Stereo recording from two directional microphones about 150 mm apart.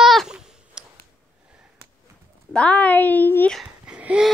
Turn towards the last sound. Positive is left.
turn(degrees=-5)  # may be behind; listen again after turning